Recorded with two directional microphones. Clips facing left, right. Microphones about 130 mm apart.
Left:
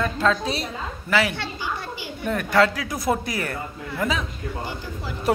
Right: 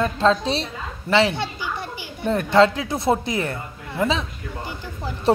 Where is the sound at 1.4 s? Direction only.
15° right (ahead or behind).